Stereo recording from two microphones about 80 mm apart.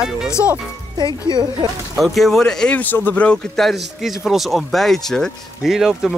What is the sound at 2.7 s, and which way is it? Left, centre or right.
Speech, left.